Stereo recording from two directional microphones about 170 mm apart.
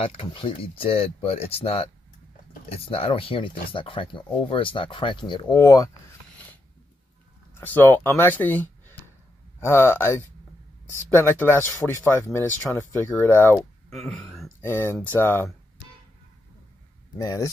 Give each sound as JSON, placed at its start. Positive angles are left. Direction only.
{"t": 0.0, "sound": "speech", "side_deg": 30}
{"t": 7.6, "sound": "speech", "side_deg": 10}
{"t": 13.9, "sound": "speech", "side_deg": 0}
{"t": 14.6, "sound": "speech", "side_deg": 15}
{"t": 17.2, "sound": "speech", "side_deg": 20}